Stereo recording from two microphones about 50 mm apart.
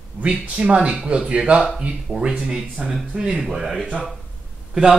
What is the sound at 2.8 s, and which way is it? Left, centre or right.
Speech, centre.